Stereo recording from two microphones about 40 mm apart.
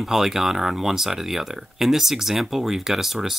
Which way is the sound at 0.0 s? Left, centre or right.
Centre.